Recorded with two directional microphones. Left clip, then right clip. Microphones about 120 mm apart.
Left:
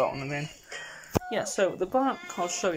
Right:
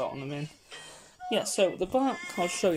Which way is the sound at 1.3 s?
15° right (ahead or behind).